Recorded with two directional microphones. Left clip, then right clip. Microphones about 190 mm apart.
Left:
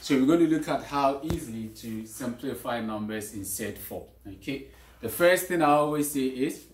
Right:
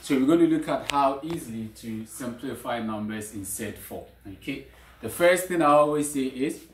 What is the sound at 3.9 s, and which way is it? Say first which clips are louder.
Speech: even; centre (ahead or behind).